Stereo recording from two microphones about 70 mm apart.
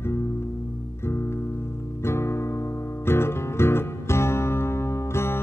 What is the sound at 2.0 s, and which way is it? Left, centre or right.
Guitar, left.